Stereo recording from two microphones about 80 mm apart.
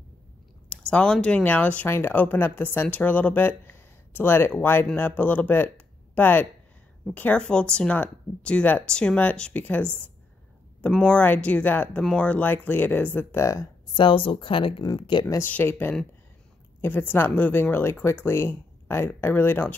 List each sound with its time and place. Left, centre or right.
0.7 s speech: centre
1.9 s speech: left
12.0 s speech: centre
13.4 s speech: left
13.9 s speech: left
15.2 s speech: left